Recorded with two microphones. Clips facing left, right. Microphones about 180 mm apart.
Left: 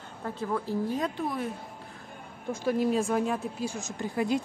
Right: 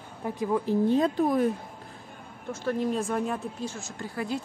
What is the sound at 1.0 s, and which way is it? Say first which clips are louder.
Speech: right 7 dB; 45° right (ahead or behind).